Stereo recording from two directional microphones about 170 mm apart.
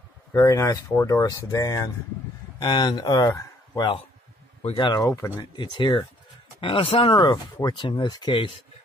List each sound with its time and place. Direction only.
0.3 s speech: 20° left (ahead or behind)